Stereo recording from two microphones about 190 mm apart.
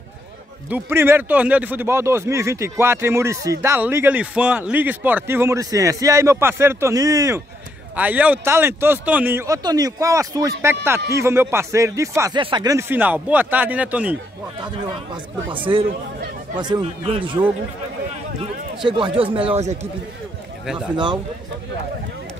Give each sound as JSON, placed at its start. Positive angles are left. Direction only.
{"t": 0.7, "sound": "speech", "side_deg": -10}
{"t": 15.5, "sound": "a man's voice", "side_deg": -25}
{"t": 18.4, "sound": "a man's voice", "side_deg": -25}
{"t": 20.9, "sound": "a man's voice", "side_deg": -25}